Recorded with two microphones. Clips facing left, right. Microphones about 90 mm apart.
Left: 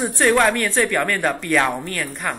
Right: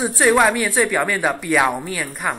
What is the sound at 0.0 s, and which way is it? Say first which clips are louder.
A woman's voice: right 1 dB; 10° right (ahead or behind).